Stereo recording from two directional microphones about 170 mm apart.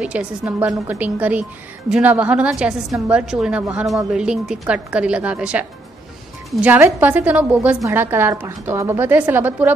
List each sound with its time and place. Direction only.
0.0 s a woman's voice: 5° right (ahead or behind)